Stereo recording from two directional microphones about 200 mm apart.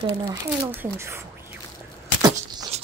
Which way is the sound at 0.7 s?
10° right (ahead or behind).